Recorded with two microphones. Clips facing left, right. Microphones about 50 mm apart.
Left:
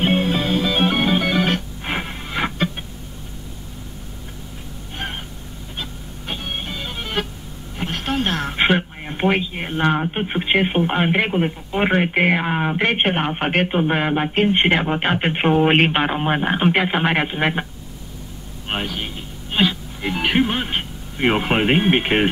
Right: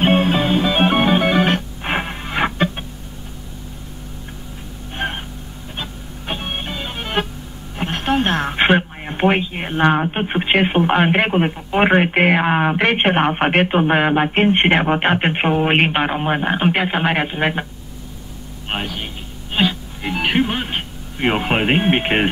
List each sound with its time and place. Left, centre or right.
0.0 s music: right
5.0 s a sound: right
5.8 s music: right
7.7 s radio: right
8.5 s a sound: right
10.5 s speech: right
15.3 s speech: centre
18.7 s a man's voice: centre
19.5 s music: centre